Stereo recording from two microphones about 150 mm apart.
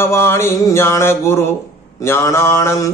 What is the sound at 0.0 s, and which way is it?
Mantra, 15° left (ahead or behind).